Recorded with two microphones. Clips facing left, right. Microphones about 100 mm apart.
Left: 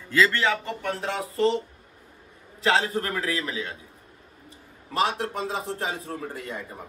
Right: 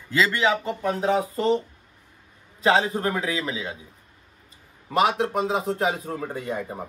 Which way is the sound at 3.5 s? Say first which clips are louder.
Right 2 dB; 15° right (ahead or behind).